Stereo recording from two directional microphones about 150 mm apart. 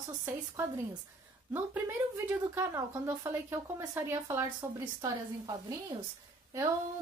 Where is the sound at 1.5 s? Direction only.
15° right (ahead or behind).